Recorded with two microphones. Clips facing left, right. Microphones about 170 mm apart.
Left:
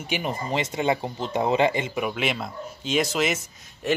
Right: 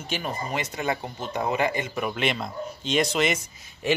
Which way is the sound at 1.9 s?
5° left (ahead or behind).